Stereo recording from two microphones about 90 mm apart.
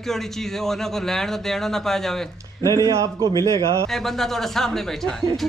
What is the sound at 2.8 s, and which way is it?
Speech, 40° right (ahead or behind).